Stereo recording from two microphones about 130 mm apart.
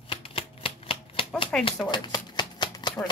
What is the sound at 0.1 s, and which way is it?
Typewriter, 45° left (ahead or behind).